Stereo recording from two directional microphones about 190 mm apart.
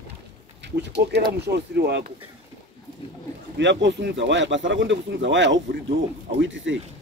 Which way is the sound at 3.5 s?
70° right (ahead or behind).